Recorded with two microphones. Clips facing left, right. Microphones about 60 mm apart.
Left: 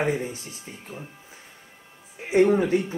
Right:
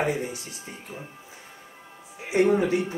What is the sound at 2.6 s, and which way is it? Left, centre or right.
Speech, right.